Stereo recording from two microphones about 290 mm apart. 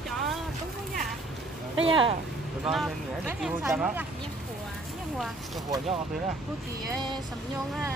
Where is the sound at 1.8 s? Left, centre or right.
Centre.